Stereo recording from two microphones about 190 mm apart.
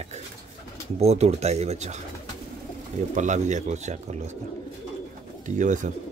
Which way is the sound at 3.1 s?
40° right (ahead or behind).